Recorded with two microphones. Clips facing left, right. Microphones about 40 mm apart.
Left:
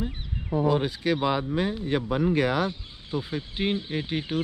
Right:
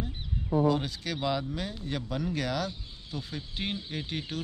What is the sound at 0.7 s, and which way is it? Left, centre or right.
Speech, left.